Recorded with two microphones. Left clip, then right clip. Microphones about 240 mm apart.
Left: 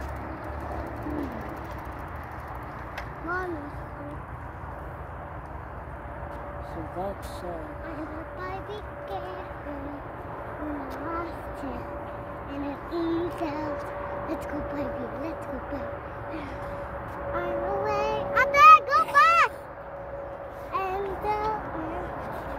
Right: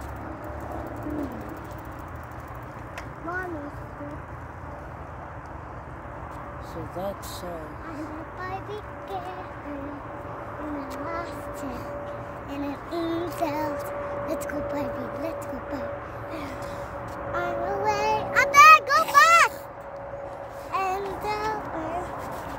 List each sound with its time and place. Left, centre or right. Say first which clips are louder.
12.6 s speech: even; right
17.3 s music: right 1 dB; right
20.7 s child singing: right 2 dB; right